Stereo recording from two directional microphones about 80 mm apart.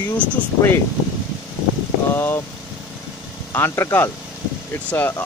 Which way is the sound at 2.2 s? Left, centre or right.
Left.